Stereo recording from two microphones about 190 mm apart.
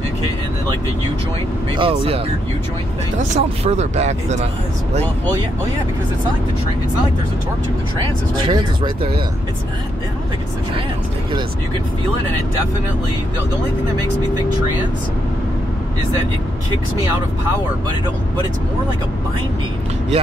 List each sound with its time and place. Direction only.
1.8 s speech: 30° right (ahead or behind)
8.5 s speech: 25° right (ahead or behind)